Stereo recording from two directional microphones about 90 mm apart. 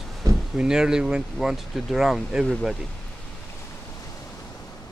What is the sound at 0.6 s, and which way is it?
Speech, 10° right (ahead or behind).